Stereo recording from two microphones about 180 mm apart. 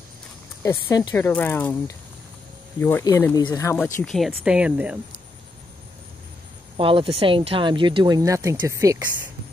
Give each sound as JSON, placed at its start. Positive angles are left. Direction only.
{"t": 0.6, "sound": "speech", "side_deg": 15}
{"t": 2.8, "sound": "speech", "side_deg": 15}
{"t": 4.0, "sound": "speech", "side_deg": 0}
{"t": 6.8, "sound": "speech", "side_deg": -30}